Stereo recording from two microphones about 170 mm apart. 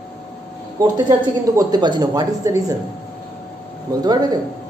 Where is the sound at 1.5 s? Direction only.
25° right (ahead or behind).